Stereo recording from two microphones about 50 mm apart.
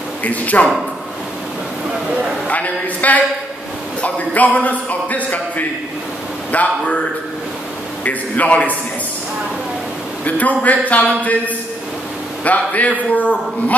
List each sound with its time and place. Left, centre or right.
0.2 s speech: left
2.4 s a man's voice: left
8.0 s speech: left
10.2 s speech: left